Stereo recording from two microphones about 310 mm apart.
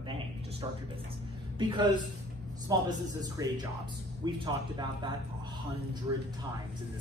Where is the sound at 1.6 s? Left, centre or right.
Centre.